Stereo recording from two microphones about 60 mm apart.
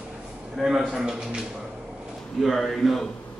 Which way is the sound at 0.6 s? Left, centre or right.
Centre.